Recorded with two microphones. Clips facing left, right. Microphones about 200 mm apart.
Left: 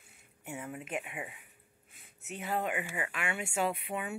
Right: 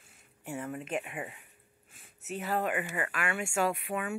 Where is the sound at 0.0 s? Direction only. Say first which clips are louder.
Right 3 dB; 10° left (ahead or behind).